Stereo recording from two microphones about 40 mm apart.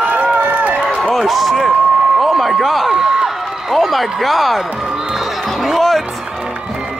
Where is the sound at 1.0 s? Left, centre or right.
Centre.